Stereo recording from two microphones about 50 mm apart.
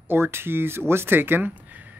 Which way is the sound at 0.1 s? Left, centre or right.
Right.